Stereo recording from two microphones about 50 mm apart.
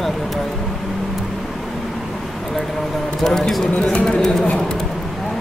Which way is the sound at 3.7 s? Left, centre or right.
Left.